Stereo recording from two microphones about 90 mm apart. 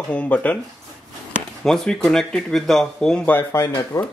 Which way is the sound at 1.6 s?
5° left (ahead or behind).